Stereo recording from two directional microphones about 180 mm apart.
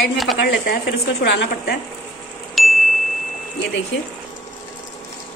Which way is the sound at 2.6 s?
Centre (ahead or behind).